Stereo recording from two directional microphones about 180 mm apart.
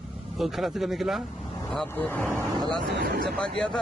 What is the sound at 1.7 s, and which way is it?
A man's voice, 10° left (ahead or behind).